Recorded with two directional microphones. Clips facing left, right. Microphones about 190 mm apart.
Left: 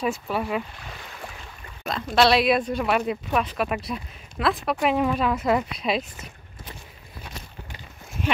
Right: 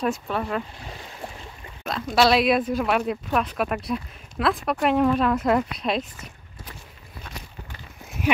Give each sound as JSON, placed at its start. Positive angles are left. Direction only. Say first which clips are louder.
{"t": 0.0, "sound": "speech", "louder": "even", "side_deg": 5}
{"t": 0.7, "sound": "a sound", "louder": "right 2 dB", "side_deg": -30}
{"t": 1.9, "sound": "speech", "louder": "even", "side_deg": 0}